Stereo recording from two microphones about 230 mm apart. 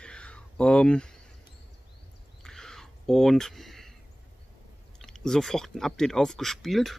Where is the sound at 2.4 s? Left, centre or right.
Centre.